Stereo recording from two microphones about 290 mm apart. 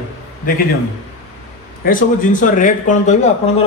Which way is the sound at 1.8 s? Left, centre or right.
Left.